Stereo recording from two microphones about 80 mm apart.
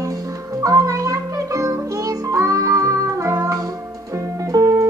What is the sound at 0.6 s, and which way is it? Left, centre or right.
Music, right.